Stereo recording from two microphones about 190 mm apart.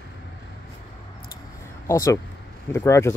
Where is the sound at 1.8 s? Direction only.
15° left (ahead or behind).